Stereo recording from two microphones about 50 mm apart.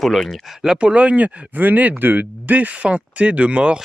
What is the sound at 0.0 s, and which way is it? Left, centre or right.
Speech, centre.